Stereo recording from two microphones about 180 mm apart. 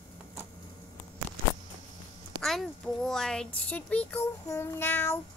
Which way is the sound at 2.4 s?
Centre (ahead or behind).